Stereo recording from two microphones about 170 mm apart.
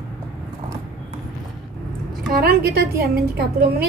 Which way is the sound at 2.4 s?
65° right (ahead or behind).